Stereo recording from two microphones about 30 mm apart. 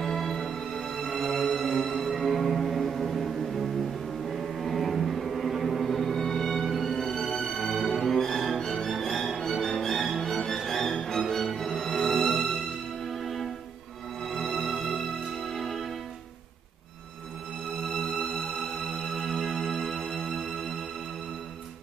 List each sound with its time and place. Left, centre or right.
0.0 s music: centre
9.0 s music: centre
14.3 s music: centre
18.2 s music: centre
18.6 s music: centre